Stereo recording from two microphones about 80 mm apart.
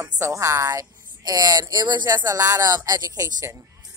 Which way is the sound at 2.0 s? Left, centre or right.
Right.